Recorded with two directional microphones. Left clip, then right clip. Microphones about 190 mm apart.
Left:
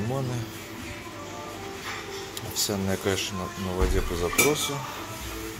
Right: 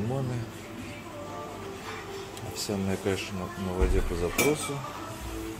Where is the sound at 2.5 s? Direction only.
Centre (ahead or behind).